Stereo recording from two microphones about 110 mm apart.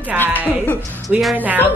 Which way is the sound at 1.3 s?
15° right (ahead or behind).